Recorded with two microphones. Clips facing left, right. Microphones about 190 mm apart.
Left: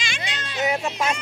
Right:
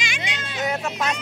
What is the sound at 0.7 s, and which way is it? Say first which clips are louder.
Speech: left 1 dB; 5° left (ahead or behind).